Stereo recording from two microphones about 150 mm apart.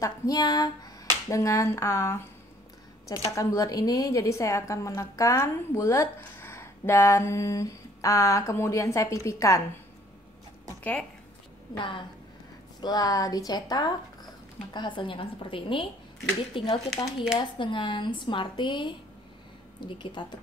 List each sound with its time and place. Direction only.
0.0 s a woman's voice: 25° left (ahead or behind)
10.8 s speech: 10° left (ahead or behind)
11.7 s a woman's voice: 35° left (ahead or behind)